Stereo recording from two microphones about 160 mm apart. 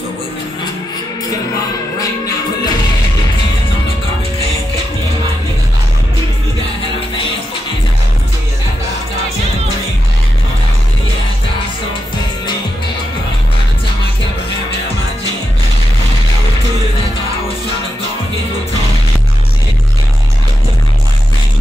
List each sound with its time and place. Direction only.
2.0 s music: 20° left (ahead or behind)